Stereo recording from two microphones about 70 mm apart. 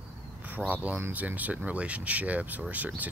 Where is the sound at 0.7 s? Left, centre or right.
Right.